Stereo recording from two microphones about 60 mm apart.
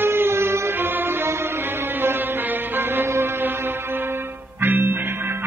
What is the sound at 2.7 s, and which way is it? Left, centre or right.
Music, right.